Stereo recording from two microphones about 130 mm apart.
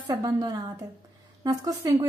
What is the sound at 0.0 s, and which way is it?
A woman's voice, 30° right (ahead or behind).